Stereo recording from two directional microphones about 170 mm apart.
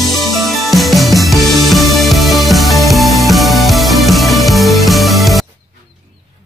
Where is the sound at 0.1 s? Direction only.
Centre (ahead or behind).